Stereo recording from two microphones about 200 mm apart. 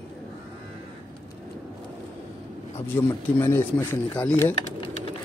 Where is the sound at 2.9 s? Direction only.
10° left (ahead or behind).